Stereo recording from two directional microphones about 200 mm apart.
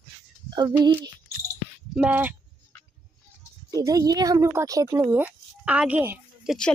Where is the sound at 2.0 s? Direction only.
5° right (ahead or behind).